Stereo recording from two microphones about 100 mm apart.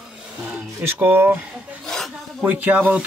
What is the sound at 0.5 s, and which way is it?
Speech, 20° right (ahead or behind).